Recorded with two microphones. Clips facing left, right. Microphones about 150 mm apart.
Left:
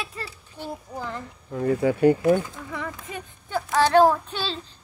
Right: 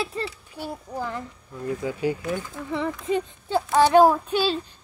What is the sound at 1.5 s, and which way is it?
Speech, 70° left (ahead or behind).